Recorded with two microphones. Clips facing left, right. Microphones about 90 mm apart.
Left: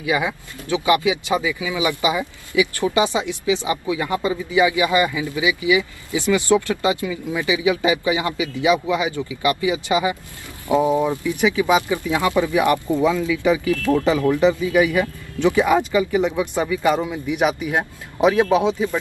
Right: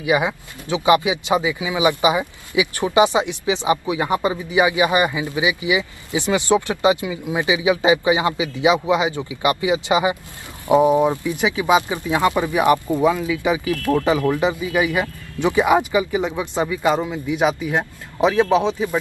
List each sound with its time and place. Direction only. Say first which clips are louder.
0.0 s speech: right 2 dB; 20° right (ahead or behind)
17.6 s speech: even; 15° left (ahead or behind)
18.7 s speech: left 1 dB; 15° right (ahead or behind)